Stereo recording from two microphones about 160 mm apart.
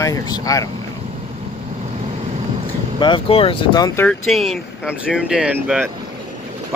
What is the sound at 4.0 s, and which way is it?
Speech, 5° left (ahead or behind).